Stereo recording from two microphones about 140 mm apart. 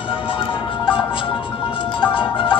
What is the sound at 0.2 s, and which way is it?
Music, 40° left (ahead or behind).